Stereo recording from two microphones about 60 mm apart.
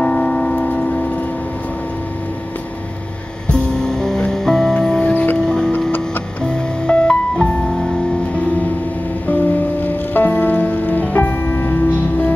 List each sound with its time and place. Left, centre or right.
0.0 s tick-tock: centre
0.7 s a sound: centre
3.4 s music: centre
5.1 s music: left
5.4 s music: centre
9.3 s music: left